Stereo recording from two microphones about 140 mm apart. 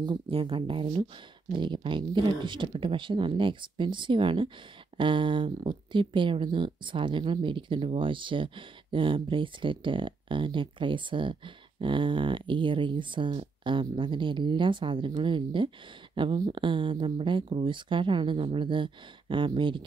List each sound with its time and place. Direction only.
0.0 s speech: 35° right (ahead or behind)